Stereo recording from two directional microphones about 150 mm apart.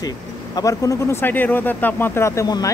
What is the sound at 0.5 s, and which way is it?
Speech, 20° left (ahead or behind).